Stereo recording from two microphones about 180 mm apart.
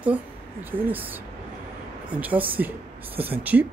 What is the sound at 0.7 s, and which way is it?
Speech, 10° right (ahead or behind).